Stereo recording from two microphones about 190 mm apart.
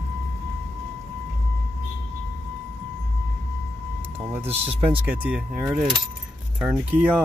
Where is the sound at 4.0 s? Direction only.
10° right (ahead or behind).